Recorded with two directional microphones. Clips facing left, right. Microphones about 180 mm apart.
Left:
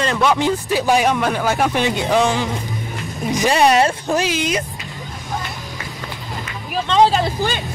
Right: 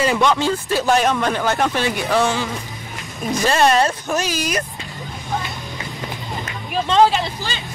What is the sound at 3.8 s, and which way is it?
Speech, 25° left (ahead or behind).